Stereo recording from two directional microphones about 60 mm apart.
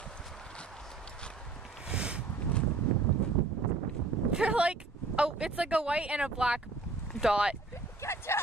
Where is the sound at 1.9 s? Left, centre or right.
Centre.